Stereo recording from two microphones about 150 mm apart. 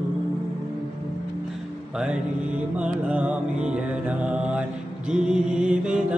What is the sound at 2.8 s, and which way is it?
Mantra, 10° right (ahead or behind).